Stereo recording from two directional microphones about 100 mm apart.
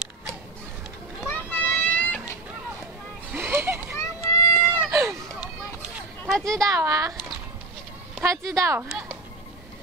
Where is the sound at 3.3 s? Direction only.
25° right (ahead or behind).